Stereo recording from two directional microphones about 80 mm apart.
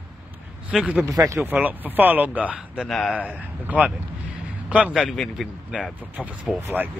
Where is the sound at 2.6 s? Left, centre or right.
Centre.